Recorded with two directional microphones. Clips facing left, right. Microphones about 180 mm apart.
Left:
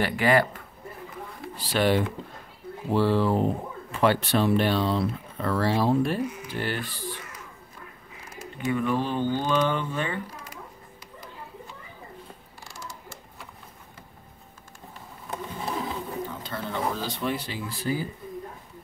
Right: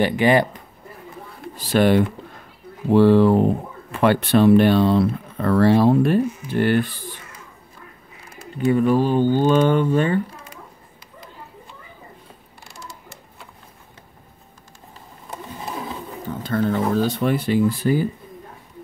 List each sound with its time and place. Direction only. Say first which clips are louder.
0.0 s speech: right 5 dB; 20° right (ahead or behind)
1.6 s speech: right 6 dB; 50° right (ahead or behind)
2.9 s speech: right 9 dB; 60° right (ahead or behind)
8.5 s speech: right 9 dB; 40° right (ahead or behind)
12.6 s creak: right 1 dB; 60° right (ahead or behind)
16.4 s speech: right 11 dB; 50° right (ahead or behind)